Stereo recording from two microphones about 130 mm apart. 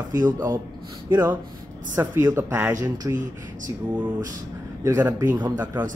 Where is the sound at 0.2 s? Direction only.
15° right (ahead or behind).